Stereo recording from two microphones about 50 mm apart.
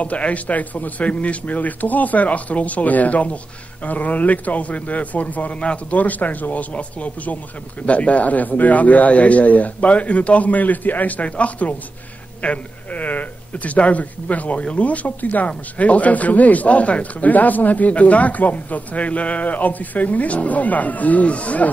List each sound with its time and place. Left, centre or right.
0.0 s speech: left